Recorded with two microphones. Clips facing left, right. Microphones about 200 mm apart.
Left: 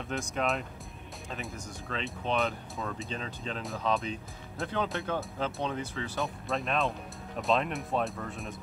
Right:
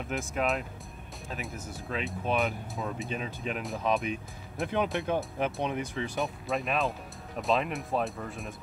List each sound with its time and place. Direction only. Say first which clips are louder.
0.1 s speech: right 1 dB; centre (ahead or behind)
3.1 s speech: right 3 dB; 15° right (ahead or behind)
6.2 s speech: right 1 dB; centre (ahead or behind)